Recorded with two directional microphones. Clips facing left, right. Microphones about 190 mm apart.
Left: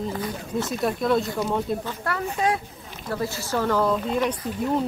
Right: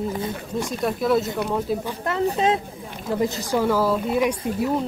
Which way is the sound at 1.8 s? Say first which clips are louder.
Right 5 dB; 20° right (ahead or behind).